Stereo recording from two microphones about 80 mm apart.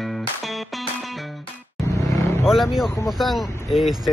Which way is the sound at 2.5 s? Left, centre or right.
Centre.